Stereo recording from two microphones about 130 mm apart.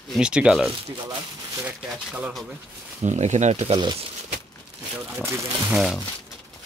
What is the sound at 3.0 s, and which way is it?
Speech, 60° right (ahead or behind).